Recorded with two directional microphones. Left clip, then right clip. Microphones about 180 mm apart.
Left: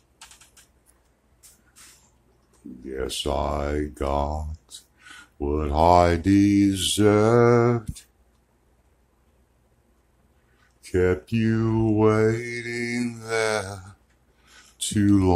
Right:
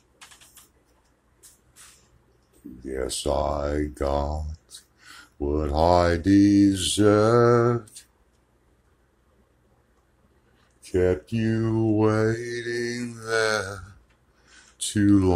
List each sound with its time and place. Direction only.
2.8 s mantra: 10° left (ahead or behind)
10.8 s speech: 20° left (ahead or behind)
13.3 s mantra: 10° left (ahead or behind)
14.8 s speech: 15° left (ahead or behind)